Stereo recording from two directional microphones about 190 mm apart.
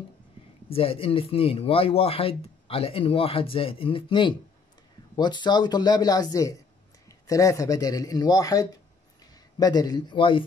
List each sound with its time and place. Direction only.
0.7 s speech: 30° left (ahead or behind)